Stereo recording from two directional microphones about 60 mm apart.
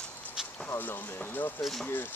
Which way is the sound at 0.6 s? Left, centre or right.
Left.